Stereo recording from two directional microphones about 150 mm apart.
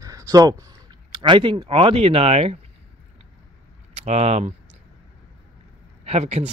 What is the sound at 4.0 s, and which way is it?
Speech, 45° right (ahead or behind).